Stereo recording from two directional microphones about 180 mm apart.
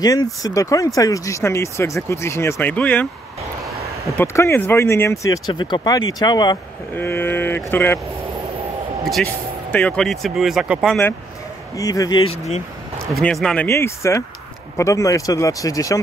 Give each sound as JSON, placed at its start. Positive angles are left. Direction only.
{"t": 0.0, "sound": "speech", "side_deg": 20}
{"t": 4.2, "sound": "speech", "side_deg": 15}
{"t": 7.0, "sound": "speech", "side_deg": 10}
{"t": 9.0, "sound": "speech", "side_deg": 5}
{"t": 11.7, "sound": "speech", "side_deg": 20}
{"t": 13.0, "sound": "speech", "side_deg": 0}
{"t": 13.7, "sound": "speech", "side_deg": 15}